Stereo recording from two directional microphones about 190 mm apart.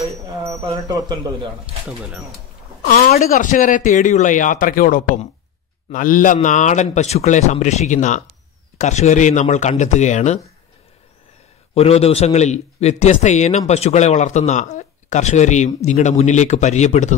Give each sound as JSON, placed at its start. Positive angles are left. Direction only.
{"t": 0.0, "sound": "speech", "side_deg": -15}
{"t": 1.9, "sound": "speech", "side_deg": 0}
{"t": 3.2, "sound": "a man's voice", "side_deg": 40}
{"t": 11.7, "sound": "a man's voice", "side_deg": 30}